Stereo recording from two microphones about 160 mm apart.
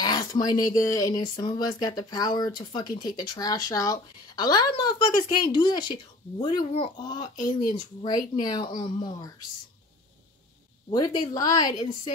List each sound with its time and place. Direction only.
0.0 s a sound: 25° left (ahead or behind)
0.7 s speech: 20° left (ahead or behind)
11.0 s speech: 25° left (ahead or behind)